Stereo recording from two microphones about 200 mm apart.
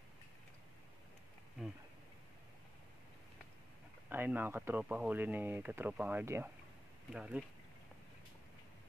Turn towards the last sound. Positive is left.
turn(degrees=-5)  # may be behind; listen again after turning